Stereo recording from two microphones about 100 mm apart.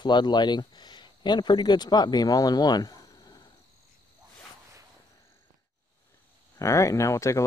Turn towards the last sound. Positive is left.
turn(degrees=30)  # may be behind; listen again after turning